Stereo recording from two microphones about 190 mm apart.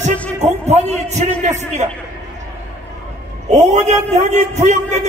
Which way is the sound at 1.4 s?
35° right (ahead or behind).